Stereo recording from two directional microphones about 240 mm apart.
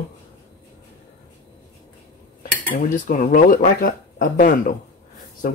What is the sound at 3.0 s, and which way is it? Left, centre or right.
Speech, left.